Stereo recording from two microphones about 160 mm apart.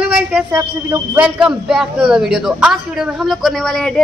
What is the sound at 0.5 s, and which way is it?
A man's voice, 15° right (ahead or behind).